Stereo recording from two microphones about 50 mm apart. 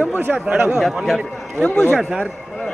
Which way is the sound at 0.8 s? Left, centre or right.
Centre.